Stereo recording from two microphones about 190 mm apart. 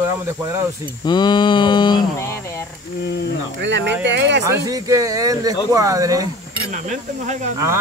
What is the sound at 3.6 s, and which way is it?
Speech, 65° right (ahead or behind).